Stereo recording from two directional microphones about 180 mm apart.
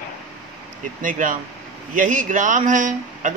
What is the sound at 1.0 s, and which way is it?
A man's voice, 50° right (ahead or behind).